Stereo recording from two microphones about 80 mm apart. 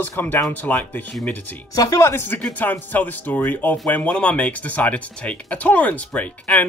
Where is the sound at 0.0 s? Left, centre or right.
Left.